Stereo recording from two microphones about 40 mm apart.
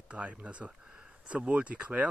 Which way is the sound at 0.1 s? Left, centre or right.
Right.